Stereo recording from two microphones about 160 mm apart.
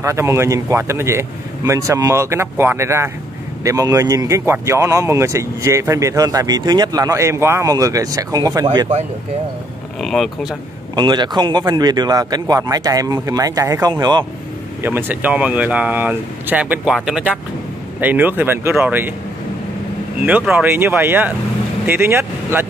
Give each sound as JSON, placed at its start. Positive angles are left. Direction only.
{"t": 0.0, "sound": "a man's voice", "side_deg": -20}
{"t": 9.9, "sound": "speech", "side_deg": 0}
{"t": 11.0, "sound": "a man's voice", "side_deg": -25}
{"t": 14.8, "sound": "a man's voice", "side_deg": -10}
{"t": 20.2, "sound": "a man's voice", "side_deg": -5}